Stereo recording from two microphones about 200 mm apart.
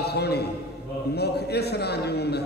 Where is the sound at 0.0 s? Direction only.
55° left (ahead or behind).